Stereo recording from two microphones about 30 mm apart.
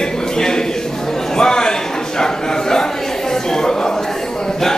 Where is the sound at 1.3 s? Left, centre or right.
Left.